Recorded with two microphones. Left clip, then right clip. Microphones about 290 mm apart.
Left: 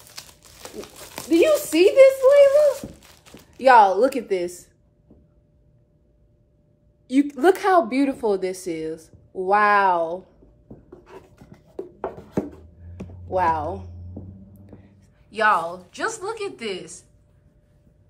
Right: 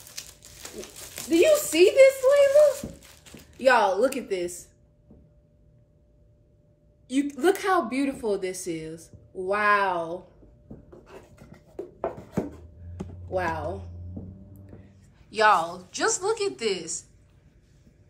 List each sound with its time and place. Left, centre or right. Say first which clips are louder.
0.1 s crumpling: even; centre
4.0 s speech: left 4 dB; left
7.1 s speech: left 6 dB; centre
13.3 s speech: left 7 dB; left
15.2 s speech: left 1 dB; centre